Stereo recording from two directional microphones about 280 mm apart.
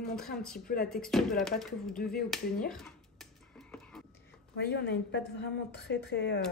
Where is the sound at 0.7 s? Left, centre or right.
Left.